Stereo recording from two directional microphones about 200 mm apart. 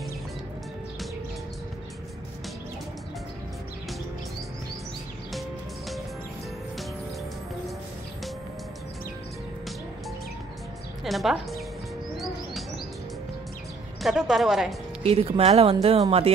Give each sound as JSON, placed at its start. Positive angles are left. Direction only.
{"t": 11.1, "sound": "a woman's voice", "side_deg": 0}
{"t": 14.0, "sound": "a woman's voice", "side_deg": 0}
{"t": 15.0, "sound": "speech", "side_deg": -30}